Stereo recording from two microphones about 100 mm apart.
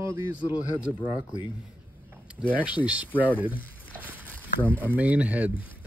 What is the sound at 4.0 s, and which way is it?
Walk, 20° right (ahead or behind).